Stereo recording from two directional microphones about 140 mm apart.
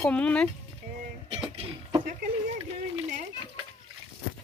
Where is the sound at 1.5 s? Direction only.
40° right (ahead or behind).